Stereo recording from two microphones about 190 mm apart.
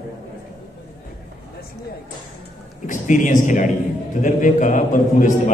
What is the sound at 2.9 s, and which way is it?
A man's voice, 40° left (ahead or behind).